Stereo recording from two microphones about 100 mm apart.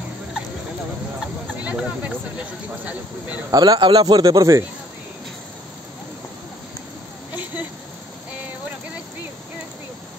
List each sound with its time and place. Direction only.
1.6 s speech: 15° right (ahead or behind)
3.5 s a man's voice: 40° right (ahead or behind)